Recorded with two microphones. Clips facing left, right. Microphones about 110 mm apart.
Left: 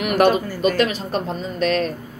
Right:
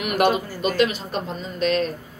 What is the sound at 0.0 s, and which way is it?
A woman's voice, 45° left (ahead or behind).